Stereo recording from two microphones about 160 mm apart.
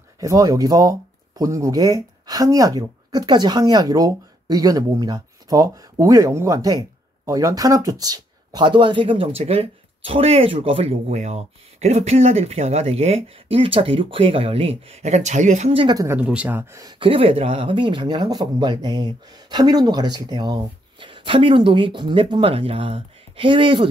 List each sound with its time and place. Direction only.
0.2 s speech: 20° right (ahead or behind)
16.0 s speech: 15° right (ahead or behind)
16.8 s speech: 35° right (ahead or behind)